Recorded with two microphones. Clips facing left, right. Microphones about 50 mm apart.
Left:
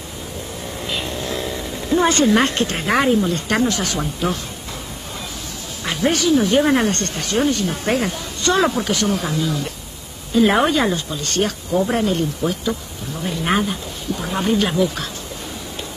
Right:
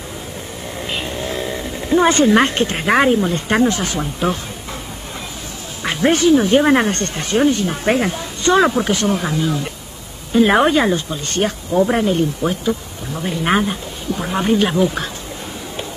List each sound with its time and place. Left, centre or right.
0.8 s vehicle: right
2.2 s speech: right
5.9 s speech: right